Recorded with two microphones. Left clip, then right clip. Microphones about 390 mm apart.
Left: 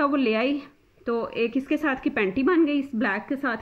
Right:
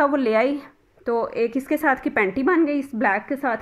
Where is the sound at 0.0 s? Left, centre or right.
Centre.